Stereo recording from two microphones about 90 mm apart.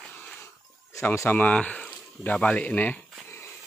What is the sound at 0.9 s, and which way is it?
Speech, 30° left (ahead or behind).